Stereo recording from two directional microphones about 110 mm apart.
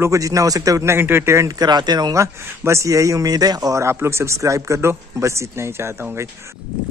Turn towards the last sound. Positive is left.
turn(degrees=-25)  # may be behind; listen again after turning